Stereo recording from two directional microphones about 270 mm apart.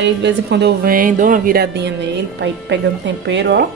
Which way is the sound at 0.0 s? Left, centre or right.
Right.